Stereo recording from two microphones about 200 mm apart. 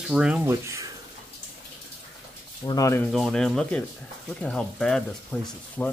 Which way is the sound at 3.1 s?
Centre (ahead or behind).